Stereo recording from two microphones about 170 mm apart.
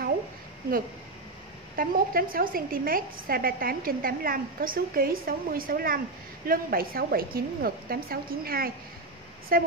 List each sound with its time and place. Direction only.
1.8 s a woman's voice: 55° right (ahead or behind)